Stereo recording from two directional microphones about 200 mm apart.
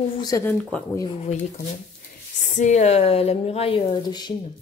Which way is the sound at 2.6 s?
35° left (ahead or behind).